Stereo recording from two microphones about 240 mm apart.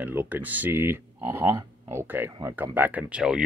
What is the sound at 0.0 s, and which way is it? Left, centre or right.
Speech, centre.